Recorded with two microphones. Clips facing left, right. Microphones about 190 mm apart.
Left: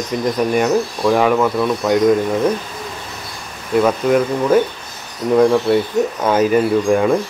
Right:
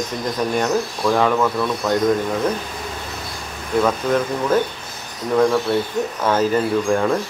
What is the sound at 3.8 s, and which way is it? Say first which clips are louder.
Speech: left 4 dB; 10° left (ahead or behind).